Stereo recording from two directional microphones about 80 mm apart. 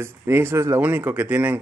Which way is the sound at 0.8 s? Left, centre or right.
Right.